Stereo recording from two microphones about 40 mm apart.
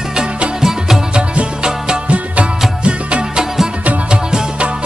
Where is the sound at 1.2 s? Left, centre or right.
Right.